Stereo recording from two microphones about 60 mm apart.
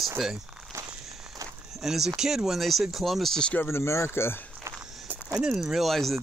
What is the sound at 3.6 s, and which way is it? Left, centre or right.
Speech, left.